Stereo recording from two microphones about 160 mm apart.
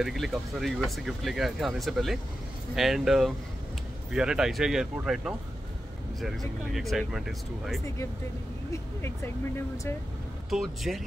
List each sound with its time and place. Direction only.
0.0 s speech: centre (ahead or behind)
8.7 s speech: 15° left (ahead or behind)
10.5 s speech: centre (ahead or behind)